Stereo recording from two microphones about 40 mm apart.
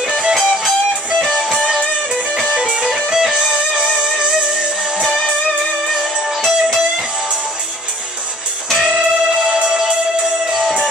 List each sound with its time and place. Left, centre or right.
1.2 s music: centre
2.5 s music: right
2.9 s music: centre
3.5 s music: right
5.9 s music: centre
8.8 s music: centre